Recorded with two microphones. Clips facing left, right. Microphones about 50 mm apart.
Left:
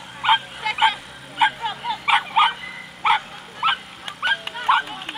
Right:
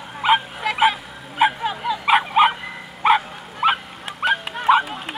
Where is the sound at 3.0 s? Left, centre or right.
Centre.